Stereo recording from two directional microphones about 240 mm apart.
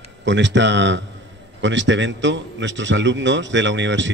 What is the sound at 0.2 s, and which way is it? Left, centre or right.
A man's voice, right.